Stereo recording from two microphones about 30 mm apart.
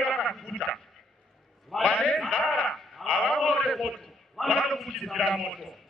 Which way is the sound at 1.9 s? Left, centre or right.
Centre.